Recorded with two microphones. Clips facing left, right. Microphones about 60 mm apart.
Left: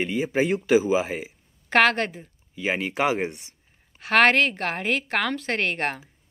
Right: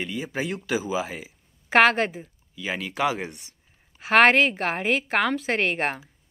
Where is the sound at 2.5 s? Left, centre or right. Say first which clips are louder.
Left 3 dB; left.